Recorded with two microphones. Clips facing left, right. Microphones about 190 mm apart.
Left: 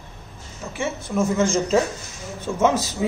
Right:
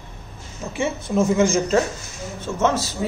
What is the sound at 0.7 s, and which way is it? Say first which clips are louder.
Speech: right 3 dB; 20° right (ahead or behind).